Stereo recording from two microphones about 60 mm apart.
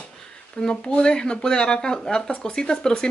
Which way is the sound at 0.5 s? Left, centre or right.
Centre.